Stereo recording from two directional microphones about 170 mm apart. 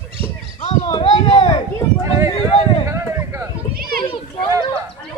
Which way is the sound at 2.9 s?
15° right (ahead or behind).